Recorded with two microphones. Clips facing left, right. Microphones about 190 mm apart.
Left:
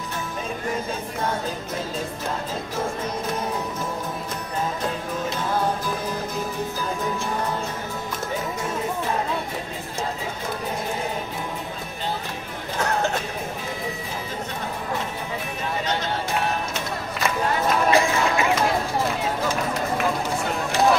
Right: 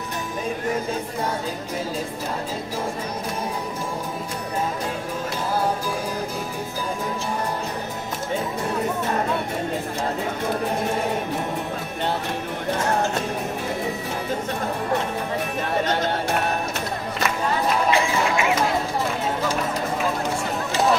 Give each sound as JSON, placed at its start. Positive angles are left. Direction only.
{"t": 15.8, "sound": "chatter", "side_deg": -50}
{"t": 17.9, "sound": "run", "side_deg": 35}